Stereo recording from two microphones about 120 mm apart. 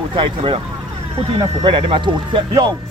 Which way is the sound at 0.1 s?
45° right (ahead or behind).